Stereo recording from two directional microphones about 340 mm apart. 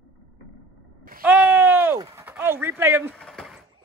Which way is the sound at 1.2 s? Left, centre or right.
Centre.